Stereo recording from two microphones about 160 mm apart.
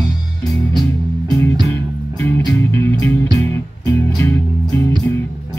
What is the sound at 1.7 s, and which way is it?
Music, 15° left (ahead or behind).